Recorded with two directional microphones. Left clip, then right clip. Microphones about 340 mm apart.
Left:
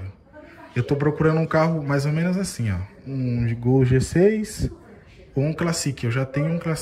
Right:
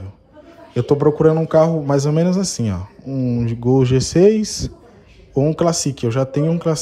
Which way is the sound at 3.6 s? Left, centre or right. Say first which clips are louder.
Right 5 dB; left.